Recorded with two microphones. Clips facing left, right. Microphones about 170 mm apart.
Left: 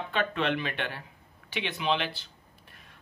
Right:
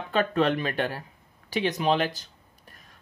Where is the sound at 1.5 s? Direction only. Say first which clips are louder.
Right 5 dB; 40° right (ahead or behind).